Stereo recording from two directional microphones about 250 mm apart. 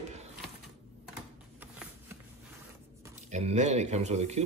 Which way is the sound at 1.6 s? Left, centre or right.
Centre.